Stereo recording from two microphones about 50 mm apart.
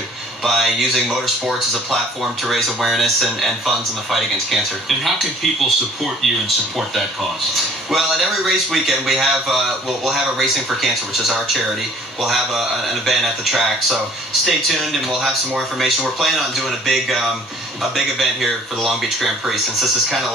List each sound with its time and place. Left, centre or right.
0.4 s a man's voice: centre
7.9 s a man's voice: centre